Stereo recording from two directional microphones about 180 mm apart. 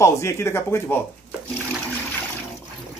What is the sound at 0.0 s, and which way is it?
Speech, 15° left (ahead or behind).